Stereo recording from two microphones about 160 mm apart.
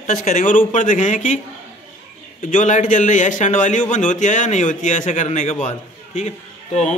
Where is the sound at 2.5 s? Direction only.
50° left (ahead or behind).